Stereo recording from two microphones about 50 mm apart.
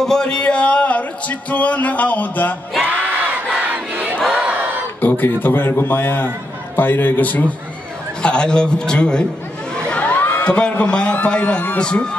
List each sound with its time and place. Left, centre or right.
0.0 s music: centre; by 2.5 s left
3.7 s crowd: right
5.0 s a man's voice: left
8.2 s a man's voice: centre
9.8 s crowd: left
10.1 s a sound: left
10.4 s a man's voice: left